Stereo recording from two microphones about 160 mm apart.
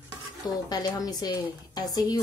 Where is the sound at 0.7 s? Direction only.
25° left (ahead or behind).